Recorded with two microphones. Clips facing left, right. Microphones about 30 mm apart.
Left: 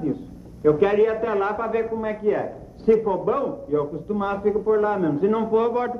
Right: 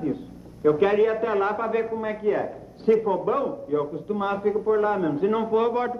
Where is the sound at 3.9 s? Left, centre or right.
Right.